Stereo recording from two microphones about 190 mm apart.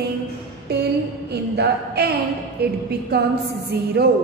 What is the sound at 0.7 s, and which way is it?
A woman's voice, 60° right (ahead or behind).